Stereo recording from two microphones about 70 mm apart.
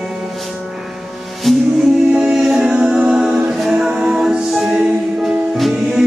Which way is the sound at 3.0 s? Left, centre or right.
Centre.